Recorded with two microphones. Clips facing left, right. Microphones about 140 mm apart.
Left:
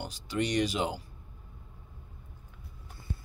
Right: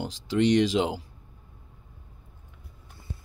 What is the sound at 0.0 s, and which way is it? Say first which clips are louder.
Speech: right 8 dB; 90° right.